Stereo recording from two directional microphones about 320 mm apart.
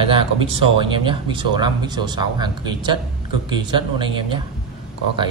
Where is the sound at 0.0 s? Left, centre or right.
Centre.